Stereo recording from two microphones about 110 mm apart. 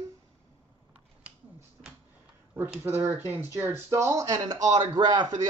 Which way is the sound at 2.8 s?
20° right (ahead or behind).